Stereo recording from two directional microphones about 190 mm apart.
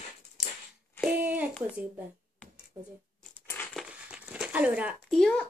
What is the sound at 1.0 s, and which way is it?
Speech, 10° right (ahead or behind).